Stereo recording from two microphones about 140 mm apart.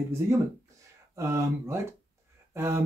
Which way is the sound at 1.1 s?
20° right (ahead or behind).